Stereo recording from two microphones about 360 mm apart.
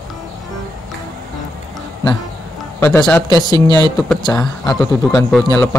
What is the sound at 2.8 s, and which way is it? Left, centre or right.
Speech, centre.